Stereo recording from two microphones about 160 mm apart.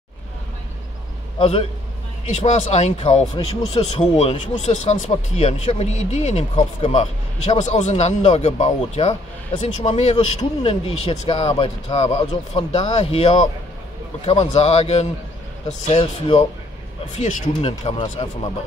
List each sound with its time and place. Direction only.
1.4 s a man's voice: 40° left (ahead or behind)
17.1 s a man's voice: 45° left (ahead or behind)